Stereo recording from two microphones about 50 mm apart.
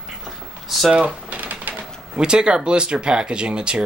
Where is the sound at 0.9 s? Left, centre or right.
Right.